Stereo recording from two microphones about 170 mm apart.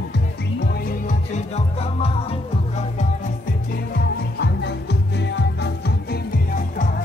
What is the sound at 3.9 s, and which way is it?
Music, 75° left (ahead or behind).